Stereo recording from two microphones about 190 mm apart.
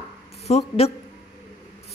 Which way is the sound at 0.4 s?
35° left (ahead or behind).